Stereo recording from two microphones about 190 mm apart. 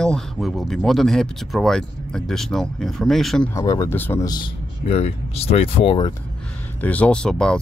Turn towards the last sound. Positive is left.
turn(degrees=5)  # may be behind; listen again after turning